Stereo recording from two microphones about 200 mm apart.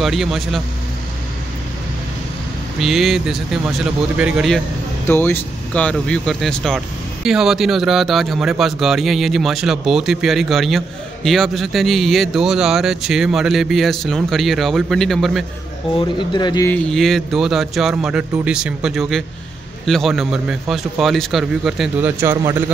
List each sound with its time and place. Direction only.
0.0 s a man's voice: centre (ahead or behind)
2.8 s a man's voice: centre (ahead or behind)
5.0 s a man's voice: 10° left (ahead or behind)
16.3 s speech: 20° left (ahead or behind)
16.7 s a man's voice: 5° left (ahead or behind)
22.2 s a man's voice: 15° right (ahead or behind)